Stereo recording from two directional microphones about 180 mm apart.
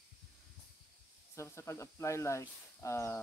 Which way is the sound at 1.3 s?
15° left (ahead or behind).